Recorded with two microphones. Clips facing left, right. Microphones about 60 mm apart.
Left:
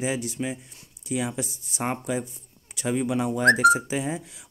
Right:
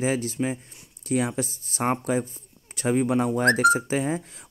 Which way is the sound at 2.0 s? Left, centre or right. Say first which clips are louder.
Right 3 dB; right.